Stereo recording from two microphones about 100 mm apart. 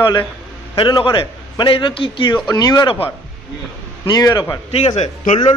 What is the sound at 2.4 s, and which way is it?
Speech, 40° left (ahead or behind).